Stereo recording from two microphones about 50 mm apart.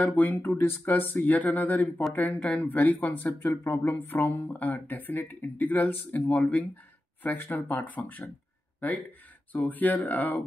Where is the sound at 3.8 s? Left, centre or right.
Left.